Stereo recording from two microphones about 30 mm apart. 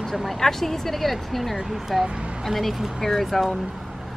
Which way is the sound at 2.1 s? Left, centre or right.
Right.